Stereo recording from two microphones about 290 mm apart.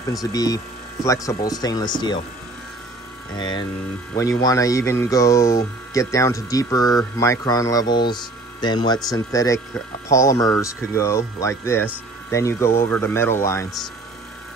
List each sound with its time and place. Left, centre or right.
0.1 s speech: centre
3.3 s speech: centre